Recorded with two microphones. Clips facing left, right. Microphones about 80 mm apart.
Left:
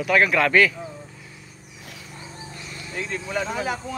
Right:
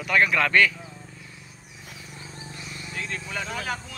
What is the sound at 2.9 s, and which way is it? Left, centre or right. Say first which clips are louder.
Speech: left 6 dB; centre.